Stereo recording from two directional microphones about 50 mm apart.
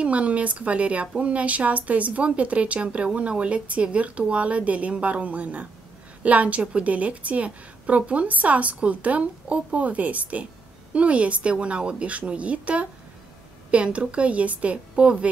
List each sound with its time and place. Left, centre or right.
0.0 s a woman's voice: right